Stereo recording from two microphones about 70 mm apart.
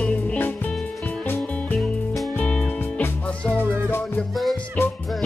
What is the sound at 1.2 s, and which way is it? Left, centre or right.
Music, left.